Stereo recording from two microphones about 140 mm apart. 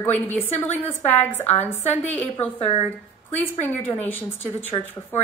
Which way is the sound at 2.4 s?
45° left (ahead or behind).